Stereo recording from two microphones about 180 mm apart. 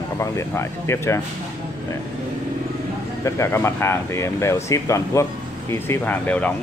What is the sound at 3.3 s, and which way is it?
Speech, 15° left (ahead or behind).